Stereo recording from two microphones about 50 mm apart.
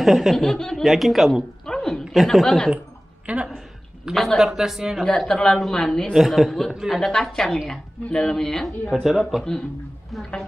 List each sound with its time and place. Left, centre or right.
0.0 s a man's voice: centre
0.4 s speech: centre
0.8 s a man's voice: centre
1.7 s a sound: centre
2.1 s a man's voice: centre
3.3 s a woman's voice: right
4.1 s a man's voice: centre
5.0 s speech: centre
6.1 s a man's voice: centre
6.9 s a man's voice: centre
10.1 s a man's voice: centre